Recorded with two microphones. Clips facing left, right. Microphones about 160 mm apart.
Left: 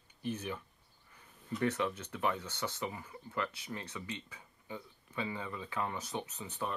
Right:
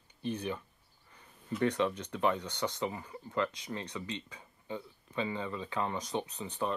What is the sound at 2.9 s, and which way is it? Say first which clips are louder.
Speech: right 4 dB; 30° right (ahead or behind).